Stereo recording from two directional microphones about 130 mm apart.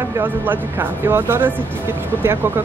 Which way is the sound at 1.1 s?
20° right (ahead or behind).